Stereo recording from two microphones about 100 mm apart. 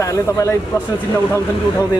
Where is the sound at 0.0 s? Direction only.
30° left (ahead or behind).